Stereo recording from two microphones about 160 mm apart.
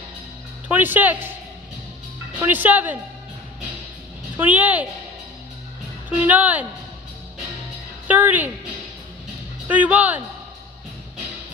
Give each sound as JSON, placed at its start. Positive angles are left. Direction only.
{"t": 0.7, "sound": "speech", "side_deg": -10}
{"t": 2.3, "sound": "speech", "side_deg": -10}
{"t": 4.4, "sound": "speech", "side_deg": -10}
{"t": 6.0, "sound": "speech", "side_deg": -10}
{"t": 8.1, "sound": "speech", "side_deg": -10}
{"t": 9.7, "sound": "speech", "side_deg": -10}